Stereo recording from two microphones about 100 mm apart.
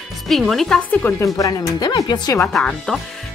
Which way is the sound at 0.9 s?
15° left (ahead or behind).